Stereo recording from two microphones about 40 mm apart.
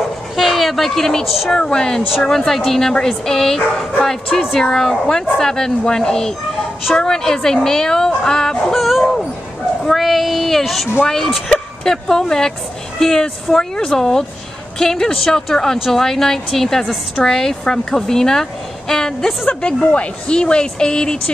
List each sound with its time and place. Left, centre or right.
0.4 s a sound: centre
1.5 s a woman's voice: centre
8.7 s dog: centre
9.8 s speech: centre
11.8 s a woman's voice: centre
19.8 s speech: left